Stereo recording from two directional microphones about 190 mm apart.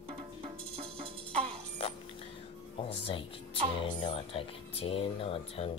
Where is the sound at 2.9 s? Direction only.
30° left (ahead or behind).